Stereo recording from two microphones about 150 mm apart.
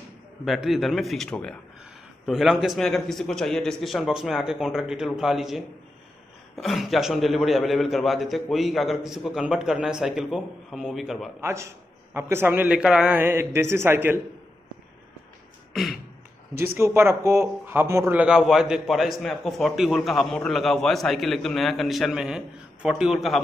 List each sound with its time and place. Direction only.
0.5 s speech: centre (ahead or behind)
11.4 s a man's voice: 20° right (ahead or behind)
15.7 s beatboxing: centre (ahead or behind)
16.7 s speech: 15° right (ahead or behind); by 23.4 s centre (ahead or behind)